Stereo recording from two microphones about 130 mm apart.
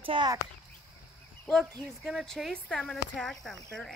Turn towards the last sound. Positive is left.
turn(degrees=5)  # may be behind; listen again after turning